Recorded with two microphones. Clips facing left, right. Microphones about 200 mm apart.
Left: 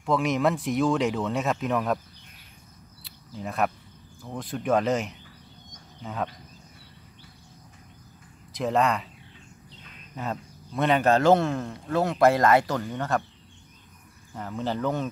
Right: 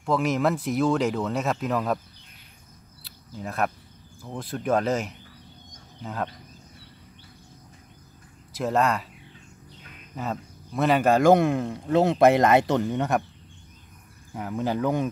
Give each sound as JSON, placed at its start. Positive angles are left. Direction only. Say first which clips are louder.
{"t": 0.0, "sound": "speech", "louder": "even", "side_deg": 0}
{"t": 3.0, "sound": "insect", "louder": "even", "side_deg": 0}
{"t": 4.2, "sound": "speech", "louder": "even", "side_deg": 0}
{"t": 8.5, "sound": "speech", "louder": "even", "side_deg": 0}
{"t": 10.1, "sound": "speech", "louder": "right 1 dB", "side_deg": 0}
{"t": 14.3, "sound": "speech", "louder": "right 3 dB", "side_deg": -10}